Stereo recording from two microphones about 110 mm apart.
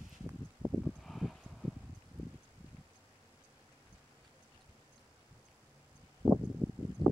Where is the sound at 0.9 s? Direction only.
Centre (ahead or behind).